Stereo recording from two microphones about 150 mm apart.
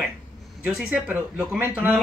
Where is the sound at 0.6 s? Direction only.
5° right (ahead or behind).